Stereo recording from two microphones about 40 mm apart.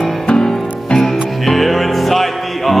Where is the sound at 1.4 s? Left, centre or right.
Centre.